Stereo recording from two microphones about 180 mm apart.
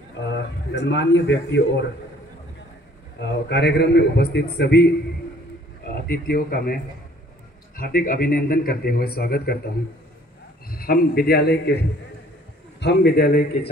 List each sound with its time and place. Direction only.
0.3 s a man's voice: 80° left
3.2 s a man's voice: 70° left (ahead or behind)
6.0 s a man's voice: 55° left (ahead or behind)
10.7 s a man's voice: 55° left (ahead or behind)
12.8 s a man's voice: 60° left (ahead or behind)